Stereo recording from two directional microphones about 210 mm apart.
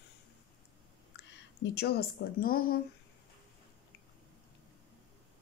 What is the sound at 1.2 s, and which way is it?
Speech, 55° left (ahead or behind).